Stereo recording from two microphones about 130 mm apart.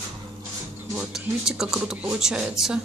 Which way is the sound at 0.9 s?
5° right (ahead or behind).